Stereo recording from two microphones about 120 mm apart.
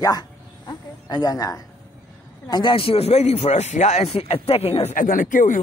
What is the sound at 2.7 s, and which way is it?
Speech, 50° left (ahead or behind).